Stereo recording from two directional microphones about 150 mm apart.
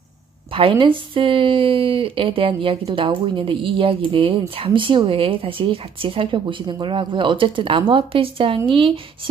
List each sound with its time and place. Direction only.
0.5 s speech: 35° right (ahead or behind)